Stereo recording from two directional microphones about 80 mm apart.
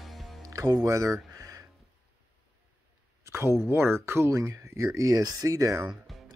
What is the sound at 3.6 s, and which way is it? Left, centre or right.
Speech, right.